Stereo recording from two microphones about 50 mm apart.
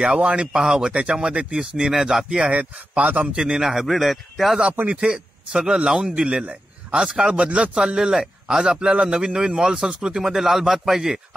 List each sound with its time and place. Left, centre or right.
0.0 s a man's voice: centre
2.9 s a man's voice: right
3.3 s a man's voice: centre
5.0 s a man's voice: centre